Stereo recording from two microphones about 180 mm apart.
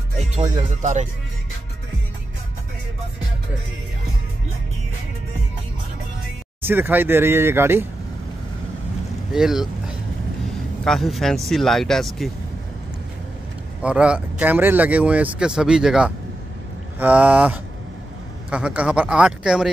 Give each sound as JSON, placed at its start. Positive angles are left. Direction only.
{"t": 0.4, "sound": "speech", "side_deg": -40}
{"t": 6.6, "sound": "speech", "side_deg": -10}
{"t": 9.3, "sound": "speech", "side_deg": 0}
{"t": 10.8, "sound": "speech", "side_deg": 0}
{"t": 13.8, "sound": "speech", "side_deg": -5}